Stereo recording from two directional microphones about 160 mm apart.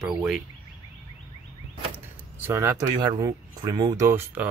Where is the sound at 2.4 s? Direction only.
15° right (ahead or behind).